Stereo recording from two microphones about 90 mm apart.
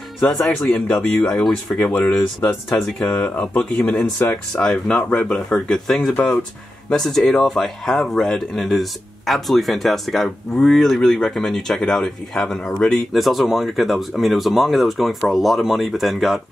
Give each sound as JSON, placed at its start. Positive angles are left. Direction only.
{"t": 0.7, "sound": "speech", "side_deg": 15}